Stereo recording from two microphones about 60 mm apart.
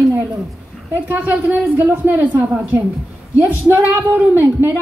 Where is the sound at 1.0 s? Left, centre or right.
Right.